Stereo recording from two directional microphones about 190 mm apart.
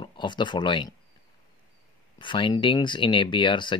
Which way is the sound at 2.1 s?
25° left (ahead or behind).